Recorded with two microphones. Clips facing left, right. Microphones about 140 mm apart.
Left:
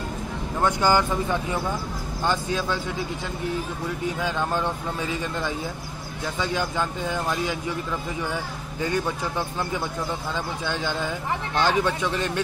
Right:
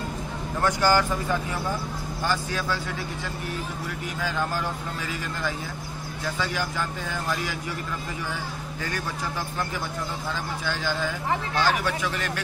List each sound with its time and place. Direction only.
0.7 s speech: 20° left (ahead or behind)
2.2 s speech: 20° left (ahead or behind)
6.4 s speech: 20° left (ahead or behind)
10.6 s speech: 20° left (ahead or behind)